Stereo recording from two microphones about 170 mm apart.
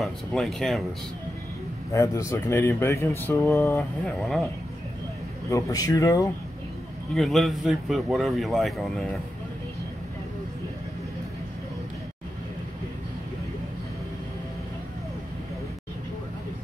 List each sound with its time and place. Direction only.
0.0 s speech: centre (ahead or behind)
1.9 s speech: 15° left (ahead or behind)
5.5 s a man's voice: 20° left (ahead or behind)
7.2 s speech: centre (ahead or behind)